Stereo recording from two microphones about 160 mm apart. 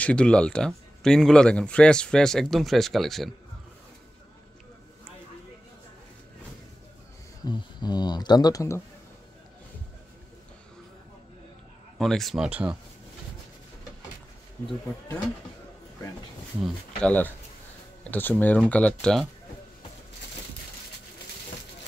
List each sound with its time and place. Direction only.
0.0 s speech: 5° left (ahead or behind)
7.4 s speech: 25° left (ahead or behind)
12.0 s speech: centre (ahead or behind)
16.6 s speech: 10° left (ahead or behind)